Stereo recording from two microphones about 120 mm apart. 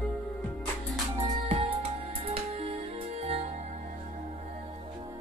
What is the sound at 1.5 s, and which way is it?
Music, 60° right (ahead or behind).